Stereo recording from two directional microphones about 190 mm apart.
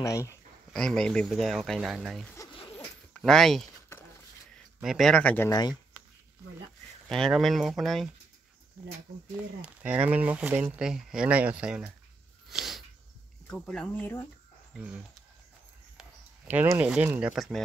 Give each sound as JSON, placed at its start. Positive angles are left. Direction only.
{"t": 0.0, "sound": "speech", "side_deg": 15}
{"t": 0.7, "sound": "speech", "side_deg": 5}
{"t": 4.8, "sound": "speech", "side_deg": 0}
{"t": 5.5, "sound": "speech", "side_deg": 20}
{"t": 7.1, "sound": "speech", "side_deg": 0}
{"t": 12.4, "sound": "a sound", "side_deg": 0}
{"t": 13.5, "sound": "speech", "side_deg": 5}
{"t": 16.0, "sound": "speech", "side_deg": -10}